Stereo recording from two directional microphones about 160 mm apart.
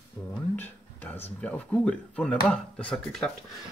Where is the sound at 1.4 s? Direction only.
10° left (ahead or behind).